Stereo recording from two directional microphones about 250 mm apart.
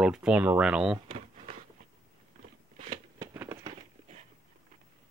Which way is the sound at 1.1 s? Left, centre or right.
Right.